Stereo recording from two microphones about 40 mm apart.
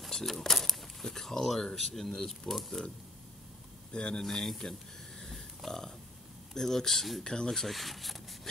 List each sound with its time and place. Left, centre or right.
0.1 s a sound: centre
1.8 s speech: centre; by 4.2 s left
4.2 s speech: centre
5.2 s pig: centre
6.5 s speech: centre